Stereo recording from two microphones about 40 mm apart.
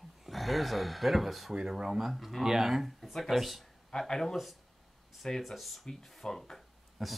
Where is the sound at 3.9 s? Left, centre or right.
Centre.